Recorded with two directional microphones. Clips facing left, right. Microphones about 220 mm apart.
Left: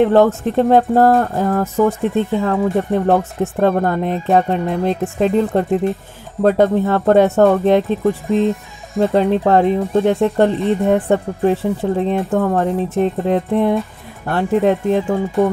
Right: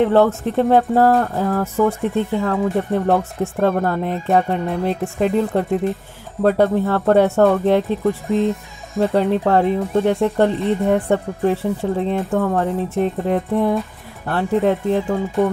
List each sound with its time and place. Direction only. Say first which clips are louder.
0.0 s speech: left 2 dB; 15° left (ahead or behind)